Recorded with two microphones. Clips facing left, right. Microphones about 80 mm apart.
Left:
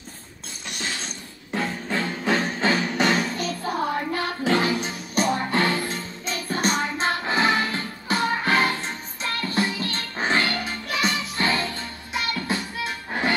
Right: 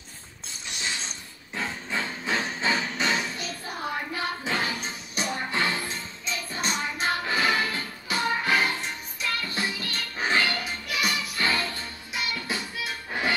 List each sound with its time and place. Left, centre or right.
1.5 s music: left
4.5 s music: left
5.1 s music: left
5.5 s music: left
7.0 s music: left
8.1 s music: left